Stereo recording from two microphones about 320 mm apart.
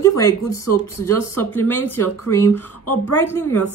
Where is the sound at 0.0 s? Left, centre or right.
Centre.